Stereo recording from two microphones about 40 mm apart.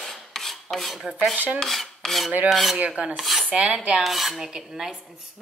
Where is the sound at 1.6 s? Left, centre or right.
Centre.